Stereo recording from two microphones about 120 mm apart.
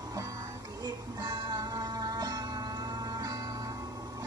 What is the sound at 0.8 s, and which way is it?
Music, 35° right (ahead or behind).